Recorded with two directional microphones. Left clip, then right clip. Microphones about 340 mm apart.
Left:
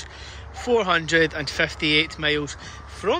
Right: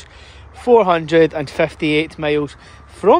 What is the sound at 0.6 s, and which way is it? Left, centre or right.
Speech, centre.